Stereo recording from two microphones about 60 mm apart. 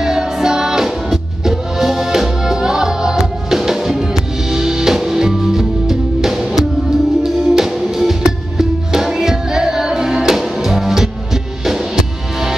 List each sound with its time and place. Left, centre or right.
0.0 s music: centre